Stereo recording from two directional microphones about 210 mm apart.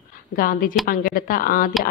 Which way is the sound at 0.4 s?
40° left (ahead or behind).